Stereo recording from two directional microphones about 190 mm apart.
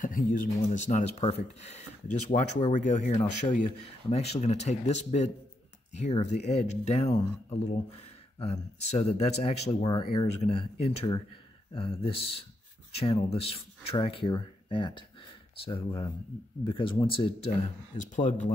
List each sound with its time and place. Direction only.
0.0 s speech: 45° left (ahead or behind)
2.3 s speech: 40° left (ahead or behind)
9.8 s speech: 20° left (ahead or behind)
10.2 s speech: 35° left (ahead or behind)
17.9 s speech: 40° left (ahead or behind)